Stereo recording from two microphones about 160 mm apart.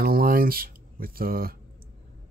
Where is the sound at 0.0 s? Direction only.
65° right (ahead or behind).